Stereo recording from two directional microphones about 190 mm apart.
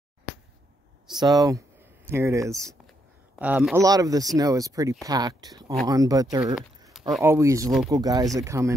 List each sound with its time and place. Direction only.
1.2 s speech: 20° right (ahead or behind)
3.8 s speech: 20° right (ahead or behind)
6.9 s a sound: centre (ahead or behind)
7.2 s speech: 15° right (ahead or behind)